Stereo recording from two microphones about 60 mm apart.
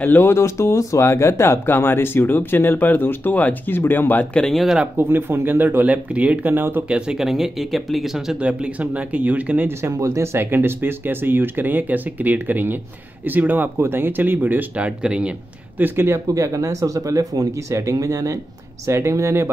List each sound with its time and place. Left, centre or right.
0.0 s speech: left
4.9 s speech: right
5.9 s speech: right
6.9 s speech: centre
8.4 s speech: centre
9.7 s speech: right
14.9 s speech: centre
15.8 s speech: right
16.3 s speech: right
17.9 s speech: right
18.9 s speech: right